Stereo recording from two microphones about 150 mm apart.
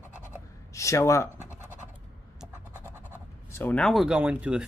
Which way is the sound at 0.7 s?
20° left (ahead or behind).